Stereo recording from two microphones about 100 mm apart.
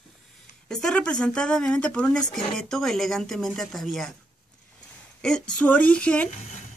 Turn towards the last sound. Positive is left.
turn(degrees=10)  # may be behind; listen again after turning